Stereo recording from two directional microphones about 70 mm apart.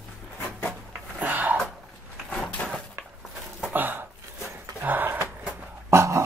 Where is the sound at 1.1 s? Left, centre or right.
Right.